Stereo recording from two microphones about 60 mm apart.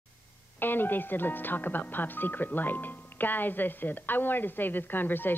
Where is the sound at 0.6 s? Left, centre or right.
Left.